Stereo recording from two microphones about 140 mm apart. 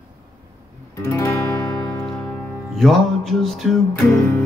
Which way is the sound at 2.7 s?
Centre (ahead or behind).